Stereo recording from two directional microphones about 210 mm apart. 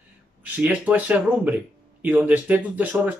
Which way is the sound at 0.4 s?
5° right (ahead or behind).